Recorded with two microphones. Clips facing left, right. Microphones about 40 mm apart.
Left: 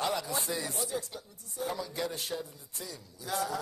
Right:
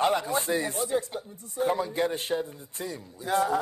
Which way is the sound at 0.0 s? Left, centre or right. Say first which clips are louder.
Right 7 dB; right.